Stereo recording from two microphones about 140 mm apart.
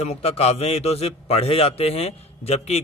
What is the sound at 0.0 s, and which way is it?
Speech, 45° left (ahead or behind).